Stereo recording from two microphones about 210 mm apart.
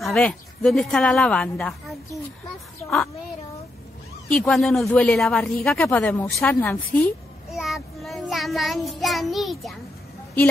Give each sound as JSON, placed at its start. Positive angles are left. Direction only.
{"t": 0.0, "sound": "speech", "side_deg": 5}
{"t": 4.3, "sound": "speech", "side_deg": 0}
{"t": 7.5, "sound": "child singing", "side_deg": 0}